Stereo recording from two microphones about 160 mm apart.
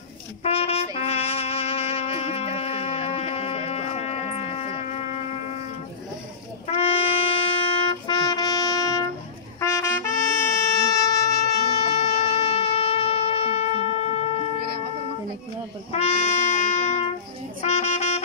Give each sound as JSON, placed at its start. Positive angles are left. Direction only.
{"t": 0.4, "sound": "music", "side_deg": 40}
{"t": 6.7, "sound": "brass instrument", "side_deg": 35}
{"t": 9.6, "sound": "trumpet", "side_deg": 20}
{"t": 12.0, "sound": "wind instrument", "side_deg": 40}
{"t": 15.9, "sound": "brass instrument", "side_deg": 40}
{"t": 17.6, "sound": "saxophone", "side_deg": 45}